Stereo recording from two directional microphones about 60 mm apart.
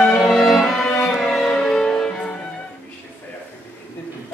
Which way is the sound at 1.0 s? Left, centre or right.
Centre.